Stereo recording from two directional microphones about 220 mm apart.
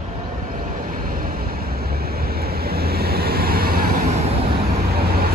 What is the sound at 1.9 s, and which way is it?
Waves, 45° right (ahead or behind).